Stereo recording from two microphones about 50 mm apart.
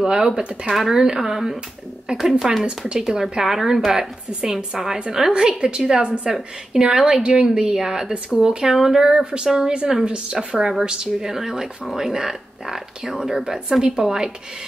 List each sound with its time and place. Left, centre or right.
0.0 s a woman's voice: centre